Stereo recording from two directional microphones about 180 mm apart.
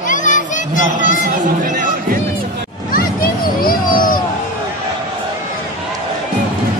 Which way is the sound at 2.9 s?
55° left (ahead or behind).